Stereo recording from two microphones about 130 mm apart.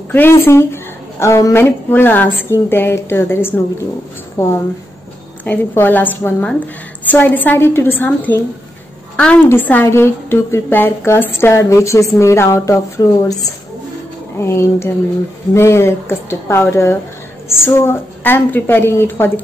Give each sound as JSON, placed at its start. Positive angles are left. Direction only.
{"t": 0.1, "sound": "a woman's voice", "side_deg": 15}
{"t": 5.4, "sound": "a woman's voice", "side_deg": 15}